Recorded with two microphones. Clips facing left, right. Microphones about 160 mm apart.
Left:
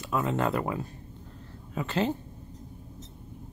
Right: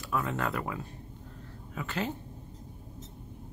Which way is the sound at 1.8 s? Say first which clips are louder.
Left 6 dB; 30° left (ahead or behind).